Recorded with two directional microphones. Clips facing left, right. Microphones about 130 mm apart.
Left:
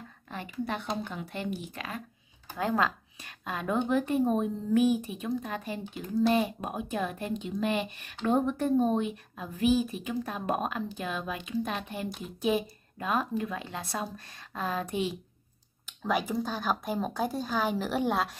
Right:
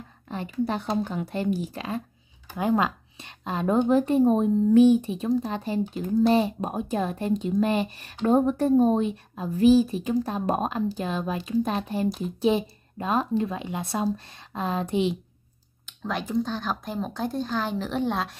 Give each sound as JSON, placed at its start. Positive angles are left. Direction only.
{"t": 0.3, "sound": "a woman's voice", "side_deg": -35}
{"t": 2.5, "sound": "speech", "side_deg": -20}
{"t": 3.4, "sound": "a woman's voice", "side_deg": -30}
{"t": 16.0, "sound": "speech", "side_deg": 0}